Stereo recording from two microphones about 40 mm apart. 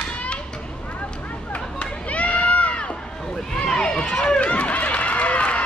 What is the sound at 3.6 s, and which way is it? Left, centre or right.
Run, left.